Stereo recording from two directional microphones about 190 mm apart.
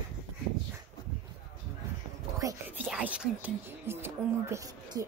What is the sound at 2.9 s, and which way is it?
Speech, 5° right (ahead or behind).